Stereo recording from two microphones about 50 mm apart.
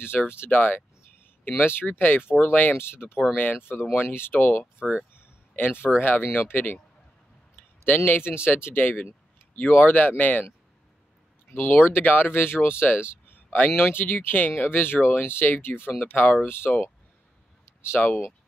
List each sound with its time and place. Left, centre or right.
0.0 s speech: left
5.1 s a sound: left
5.9 s speech: left
7.8 s speech: left
11.5 s speech: left
16.4 s speech: left